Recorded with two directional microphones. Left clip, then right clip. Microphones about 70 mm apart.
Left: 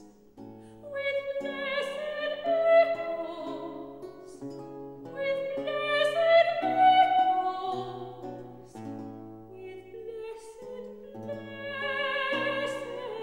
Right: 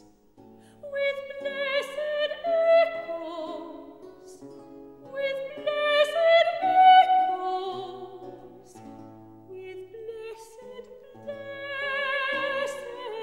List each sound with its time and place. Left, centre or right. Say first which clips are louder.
0.9 s music: right 2 dB; right
5.1 s music: even; right
7.7 s music: left 1 dB; left
9.6 s music: right 3 dB; right